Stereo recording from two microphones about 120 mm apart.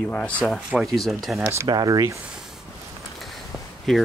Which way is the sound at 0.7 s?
5° right (ahead or behind).